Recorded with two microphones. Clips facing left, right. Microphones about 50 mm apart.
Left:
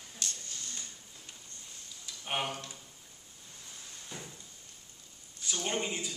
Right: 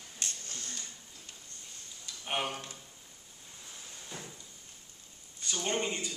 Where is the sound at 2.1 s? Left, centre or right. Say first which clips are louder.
Even; centre.